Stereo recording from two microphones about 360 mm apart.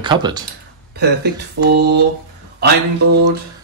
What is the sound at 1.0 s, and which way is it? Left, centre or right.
Speech, right.